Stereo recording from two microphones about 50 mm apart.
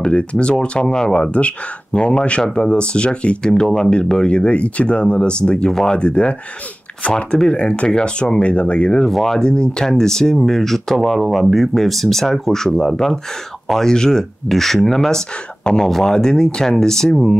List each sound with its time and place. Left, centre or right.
0.0 s speech: left
9.0 s speech: centre